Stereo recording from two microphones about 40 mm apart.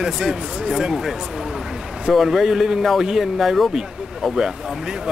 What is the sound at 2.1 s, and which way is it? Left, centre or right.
Speech, centre.